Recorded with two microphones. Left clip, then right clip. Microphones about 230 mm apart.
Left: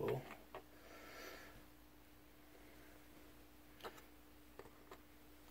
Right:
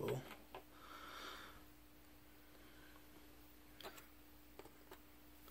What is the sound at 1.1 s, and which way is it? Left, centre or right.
Snort, centre.